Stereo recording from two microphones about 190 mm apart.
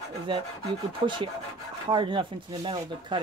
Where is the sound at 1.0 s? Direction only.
25° right (ahead or behind).